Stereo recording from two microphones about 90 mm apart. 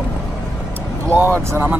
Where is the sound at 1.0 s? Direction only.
30° right (ahead or behind).